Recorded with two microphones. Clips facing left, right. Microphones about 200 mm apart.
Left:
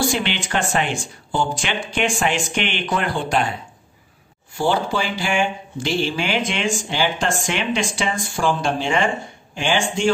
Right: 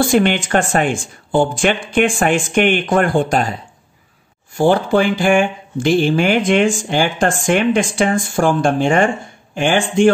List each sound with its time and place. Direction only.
0.0 s speech: 50° right (ahead or behind)
4.6 s speech: 55° right (ahead or behind)